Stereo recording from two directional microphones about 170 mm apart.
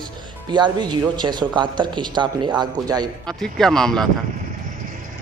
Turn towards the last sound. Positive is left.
turn(degrees=5)  # may be behind; listen again after turning